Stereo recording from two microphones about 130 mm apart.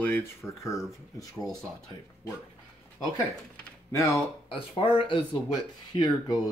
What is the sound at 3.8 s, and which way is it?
Speech, 25° left (ahead or behind).